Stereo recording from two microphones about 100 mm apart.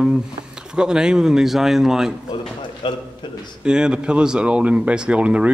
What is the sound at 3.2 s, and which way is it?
Speech, 50° left (ahead or behind).